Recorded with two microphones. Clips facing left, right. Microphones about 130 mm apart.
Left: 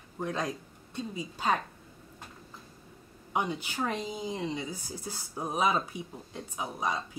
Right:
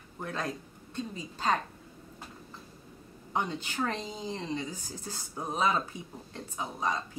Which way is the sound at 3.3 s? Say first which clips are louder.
Left 1 dB; 10° left (ahead or behind).